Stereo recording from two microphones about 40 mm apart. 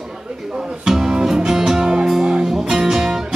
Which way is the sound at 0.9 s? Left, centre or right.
Centre.